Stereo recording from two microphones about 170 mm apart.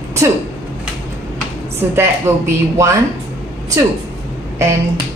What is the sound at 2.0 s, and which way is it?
Speech, 15° right (ahead or behind).